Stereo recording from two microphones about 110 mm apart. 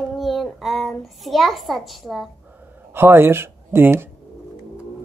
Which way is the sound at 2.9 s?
20° right (ahead or behind).